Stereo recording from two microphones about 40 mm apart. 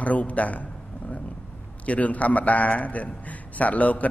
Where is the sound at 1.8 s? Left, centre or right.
Left.